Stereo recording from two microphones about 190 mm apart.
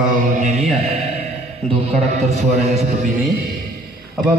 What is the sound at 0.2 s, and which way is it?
Mantra, 40° right (ahead or behind).